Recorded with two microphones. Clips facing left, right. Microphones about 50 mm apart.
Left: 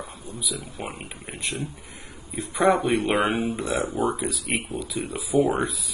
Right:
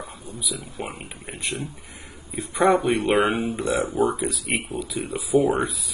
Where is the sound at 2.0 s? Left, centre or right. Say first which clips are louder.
Right 1 dB; centre.